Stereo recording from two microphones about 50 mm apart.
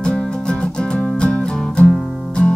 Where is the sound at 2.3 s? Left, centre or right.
Centre.